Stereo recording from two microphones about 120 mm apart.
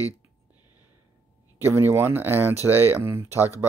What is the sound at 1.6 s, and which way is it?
Speech, 20° right (ahead or behind).